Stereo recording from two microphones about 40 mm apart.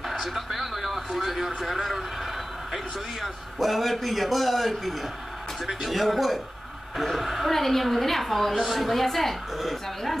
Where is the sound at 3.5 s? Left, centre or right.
Centre.